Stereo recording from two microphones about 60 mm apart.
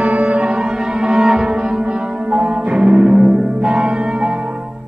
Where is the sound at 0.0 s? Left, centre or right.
Right.